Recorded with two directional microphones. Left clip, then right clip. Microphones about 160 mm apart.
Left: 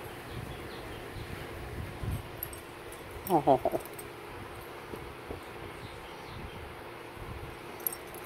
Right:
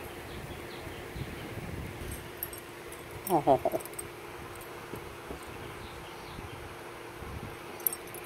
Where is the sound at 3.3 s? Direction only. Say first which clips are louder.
Even; 10° left (ahead or behind).